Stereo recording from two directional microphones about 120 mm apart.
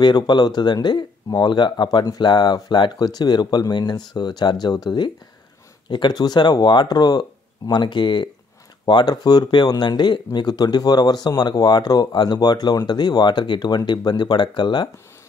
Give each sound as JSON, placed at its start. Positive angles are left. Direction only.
{"t": 0.0, "sound": "speech", "side_deg": 35}